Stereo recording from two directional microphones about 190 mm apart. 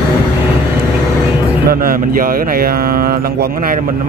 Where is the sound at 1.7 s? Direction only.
50° right (ahead or behind).